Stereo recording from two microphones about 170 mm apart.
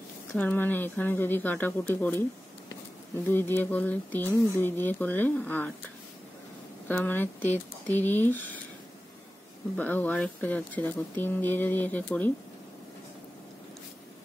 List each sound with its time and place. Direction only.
0.3 s speech: 10° left (ahead or behind)
3.3 s speech: 10° left (ahead or behind)
6.9 s speech: 10° left (ahead or behind)
9.8 s speech: 10° left (ahead or behind)